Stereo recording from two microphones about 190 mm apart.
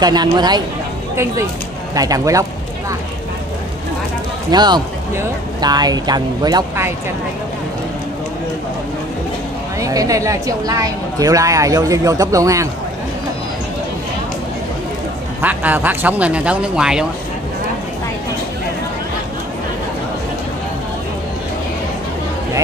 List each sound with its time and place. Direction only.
0.0 s speech: 20° right (ahead or behind)
4.5 s speech: 20° right (ahead or behind)
9.8 s a woman's voice: 15° right (ahead or behind)
15.4 s a woman's voice: 10° right (ahead or behind)